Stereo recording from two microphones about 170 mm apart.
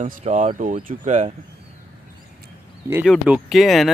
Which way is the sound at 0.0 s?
40° right (ahead or behind).